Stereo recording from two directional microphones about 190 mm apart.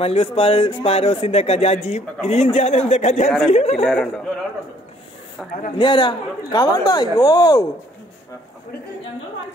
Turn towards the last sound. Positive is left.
turn(degrees=20)  # may be behind; listen again after turning